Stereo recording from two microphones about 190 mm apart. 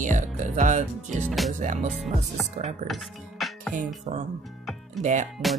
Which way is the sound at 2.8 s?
Centre (ahead or behind).